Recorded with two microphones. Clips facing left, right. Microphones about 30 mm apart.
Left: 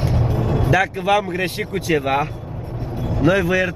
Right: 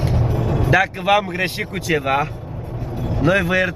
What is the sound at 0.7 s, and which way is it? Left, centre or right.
Speech, centre.